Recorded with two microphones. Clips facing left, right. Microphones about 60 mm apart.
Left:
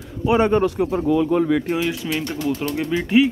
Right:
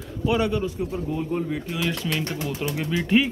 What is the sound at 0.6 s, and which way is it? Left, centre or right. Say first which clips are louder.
Speech: left 8 dB; left.